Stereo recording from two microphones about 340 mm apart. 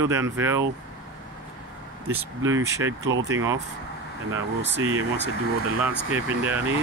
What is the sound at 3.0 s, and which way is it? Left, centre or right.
Speech, right.